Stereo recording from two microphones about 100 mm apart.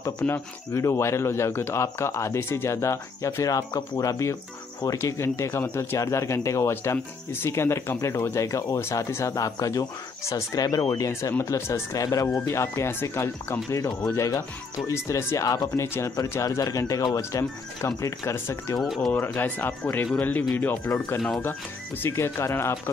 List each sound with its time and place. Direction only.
0.3 s speech: 30° left (ahead or behind)